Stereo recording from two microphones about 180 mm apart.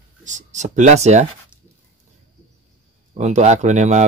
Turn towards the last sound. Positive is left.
turn(degrees=-40)  # may be behind; listen again after turning